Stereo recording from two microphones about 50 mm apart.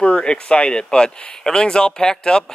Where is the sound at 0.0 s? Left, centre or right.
Centre.